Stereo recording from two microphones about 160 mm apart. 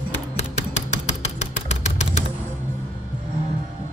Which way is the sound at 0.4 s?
45° left (ahead or behind).